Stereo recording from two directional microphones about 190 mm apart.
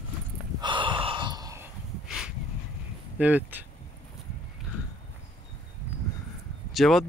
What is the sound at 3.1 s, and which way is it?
Speech, 10° right (ahead or behind).